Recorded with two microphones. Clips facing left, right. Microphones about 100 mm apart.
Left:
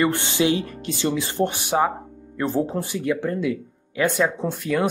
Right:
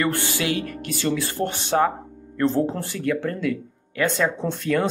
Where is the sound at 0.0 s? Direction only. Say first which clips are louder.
Left 3 dB; 20° left (ahead or behind).